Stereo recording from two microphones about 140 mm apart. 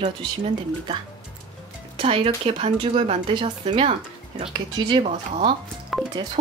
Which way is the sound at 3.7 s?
45° right (ahead or behind).